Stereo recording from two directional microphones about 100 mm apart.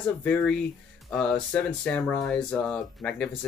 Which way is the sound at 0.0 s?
15° left (ahead or behind).